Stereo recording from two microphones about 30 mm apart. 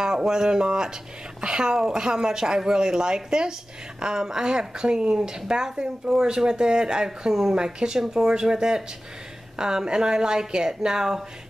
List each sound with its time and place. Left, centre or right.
0.0 s speech: right